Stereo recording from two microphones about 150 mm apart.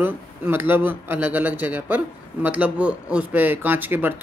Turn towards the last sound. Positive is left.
turn(degrees=-15)  # may be behind; listen again after turning